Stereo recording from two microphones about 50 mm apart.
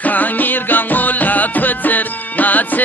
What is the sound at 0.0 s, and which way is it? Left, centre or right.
Music, left.